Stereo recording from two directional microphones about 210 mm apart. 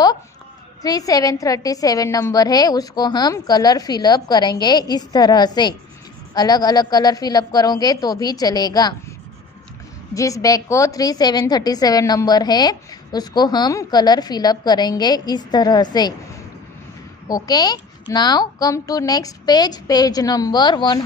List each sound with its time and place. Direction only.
0.8 s a woman's voice: 15° left (ahead or behind)
10.1 s a woman's voice: 15° left (ahead or behind)
17.3 s a woman's voice: 20° left (ahead or behind)